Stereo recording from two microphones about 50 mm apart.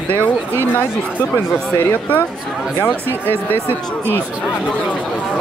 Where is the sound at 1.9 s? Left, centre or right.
Left.